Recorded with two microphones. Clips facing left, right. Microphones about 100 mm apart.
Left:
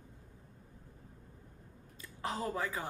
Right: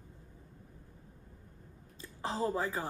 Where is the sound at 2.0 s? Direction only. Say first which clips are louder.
Right 3 dB; 30° right (ahead or behind).